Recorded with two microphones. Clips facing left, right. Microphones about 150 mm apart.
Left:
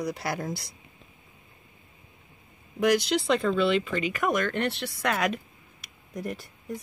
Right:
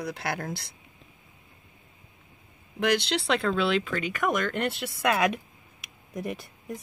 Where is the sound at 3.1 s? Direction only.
70° right (ahead or behind).